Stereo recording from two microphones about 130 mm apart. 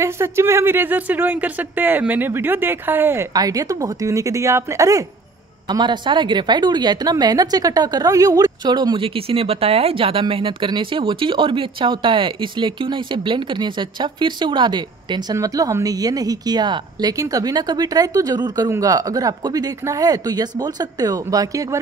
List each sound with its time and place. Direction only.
0.0 s speech: 20° right (ahead or behind)
3.3 s speech: 25° right (ahead or behind)
5.7 s a woman's voice: 35° right (ahead or behind)